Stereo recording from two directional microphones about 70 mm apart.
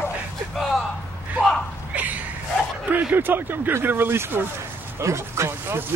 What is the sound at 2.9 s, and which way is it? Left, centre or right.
Speech, right.